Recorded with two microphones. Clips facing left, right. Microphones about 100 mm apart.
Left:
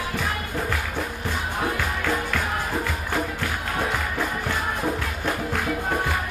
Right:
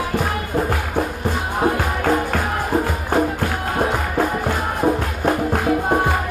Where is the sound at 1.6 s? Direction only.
40° right (ahead or behind).